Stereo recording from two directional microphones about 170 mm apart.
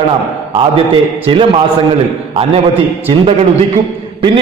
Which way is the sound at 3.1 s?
35° right (ahead or behind).